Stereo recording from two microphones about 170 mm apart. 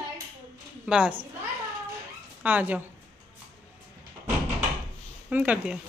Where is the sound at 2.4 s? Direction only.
10° right (ahead or behind).